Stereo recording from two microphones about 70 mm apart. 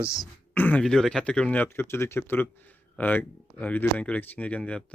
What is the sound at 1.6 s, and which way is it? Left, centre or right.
Speech, left.